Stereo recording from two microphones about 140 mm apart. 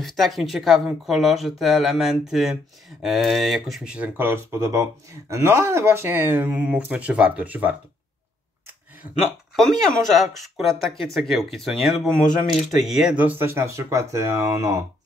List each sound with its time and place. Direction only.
0.0 s speech: centre (ahead or behind)
9.6 s speech: centre (ahead or behind); by 14.9 s 20° right (ahead or behind)